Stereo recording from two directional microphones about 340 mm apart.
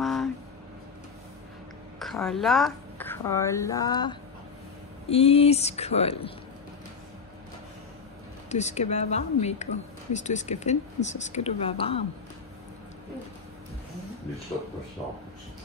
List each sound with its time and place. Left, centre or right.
0.0 s a sound: centre
2.0 s a woman's voice: centre
8.5 s a woman's voice: centre